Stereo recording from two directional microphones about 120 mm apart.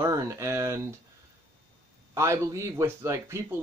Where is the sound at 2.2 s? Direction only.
25° right (ahead or behind).